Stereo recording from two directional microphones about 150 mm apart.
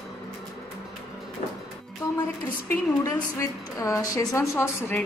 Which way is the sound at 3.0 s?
20° left (ahead or behind).